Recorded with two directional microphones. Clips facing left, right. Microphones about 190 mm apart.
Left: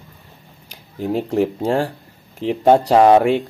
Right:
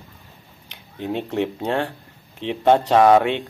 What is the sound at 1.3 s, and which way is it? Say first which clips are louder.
Speech: left 5 dB; 30° left (ahead or behind).